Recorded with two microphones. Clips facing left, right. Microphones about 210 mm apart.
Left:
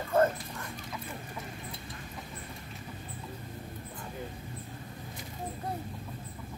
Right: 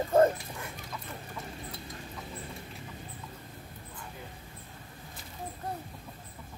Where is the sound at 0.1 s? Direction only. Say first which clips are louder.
Right 2 dB; 15° right (ahead or behind).